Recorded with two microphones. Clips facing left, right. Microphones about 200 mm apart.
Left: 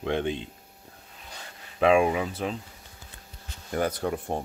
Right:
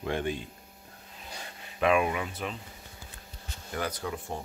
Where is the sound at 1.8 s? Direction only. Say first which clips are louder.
Left 5 dB; 30° left (ahead or behind).